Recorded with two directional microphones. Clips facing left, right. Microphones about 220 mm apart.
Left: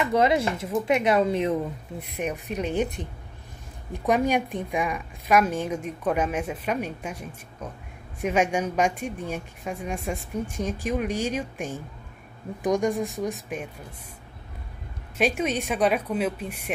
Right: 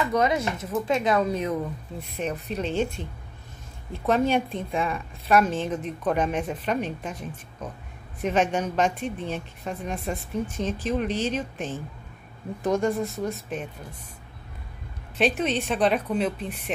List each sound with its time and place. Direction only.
0.0 s speech: 25° left (ahead or behind)
2.1 s a woman's voice: 15° left (ahead or behind)
15.1 s a woman's voice: 10° left (ahead or behind)